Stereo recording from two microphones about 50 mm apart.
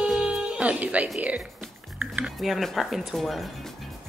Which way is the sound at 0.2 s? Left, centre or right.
Right.